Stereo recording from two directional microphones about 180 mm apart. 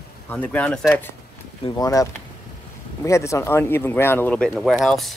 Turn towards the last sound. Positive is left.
turn(degrees=0)  # may be behind; listen again after turning